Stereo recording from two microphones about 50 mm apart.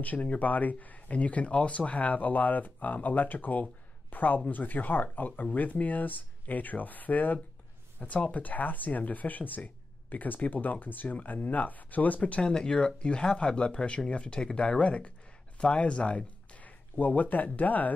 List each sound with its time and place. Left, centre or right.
0.0 s speech: left